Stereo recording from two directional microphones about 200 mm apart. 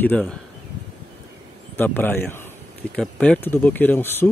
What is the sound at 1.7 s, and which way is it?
Speech, 10° left (ahead or behind).